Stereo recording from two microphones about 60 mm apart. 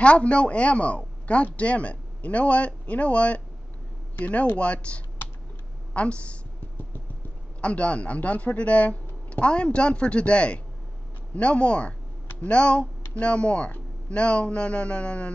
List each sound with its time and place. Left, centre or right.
0.0 s speech: centre
7.6 s speech: left